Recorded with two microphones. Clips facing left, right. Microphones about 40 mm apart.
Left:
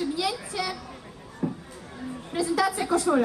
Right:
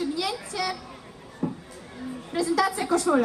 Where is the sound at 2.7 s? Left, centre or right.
Centre.